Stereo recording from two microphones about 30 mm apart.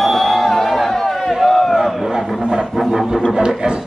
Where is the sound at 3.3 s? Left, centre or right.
Right.